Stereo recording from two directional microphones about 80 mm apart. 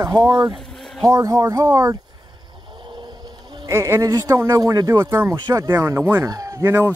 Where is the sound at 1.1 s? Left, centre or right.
Right.